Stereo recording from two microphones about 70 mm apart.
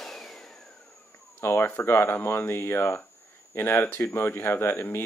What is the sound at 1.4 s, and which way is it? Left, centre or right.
Speech, left.